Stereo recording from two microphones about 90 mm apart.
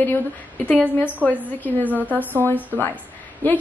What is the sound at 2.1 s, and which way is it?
Speech, 20° right (ahead or behind).